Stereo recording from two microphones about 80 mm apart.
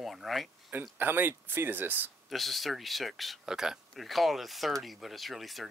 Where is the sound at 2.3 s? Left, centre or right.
Centre.